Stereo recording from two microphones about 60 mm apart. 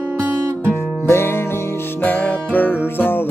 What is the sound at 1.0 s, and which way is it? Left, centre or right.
Music, left.